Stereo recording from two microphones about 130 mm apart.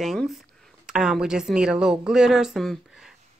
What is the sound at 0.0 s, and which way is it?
Speech, centre (ahead or behind).